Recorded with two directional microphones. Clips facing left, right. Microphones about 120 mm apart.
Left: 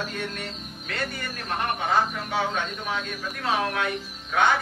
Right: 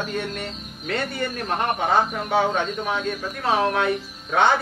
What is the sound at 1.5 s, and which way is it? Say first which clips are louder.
A man's voice: right 3 dB; 30° right (ahead or behind).